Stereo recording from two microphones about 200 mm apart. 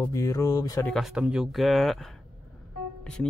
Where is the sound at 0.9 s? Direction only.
5° right (ahead or behind).